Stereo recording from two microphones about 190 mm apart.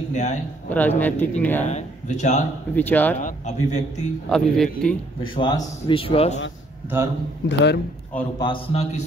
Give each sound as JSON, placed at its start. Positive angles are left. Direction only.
{"t": 0.1, "sound": "a man's voice", "side_deg": 40}
{"t": 0.7, "sound": "a man's voice", "side_deg": 10}
{"t": 1.7, "sound": "speech", "side_deg": 35}
{"t": 2.7, "sound": "a man's voice", "side_deg": 10}
{"t": 3.2, "sound": "a man's voice", "side_deg": 40}
{"t": 4.3, "sound": "speech", "side_deg": 5}
{"t": 5.2, "sound": "a man's voice", "side_deg": 25}
{"t": 7.4, "sound": "speech", "side_deg": 65}
{"t": 8.4, "sound": "a man's voice", "side_deg": 25}